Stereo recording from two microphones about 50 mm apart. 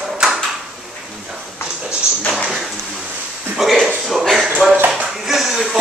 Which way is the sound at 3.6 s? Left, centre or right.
Centre.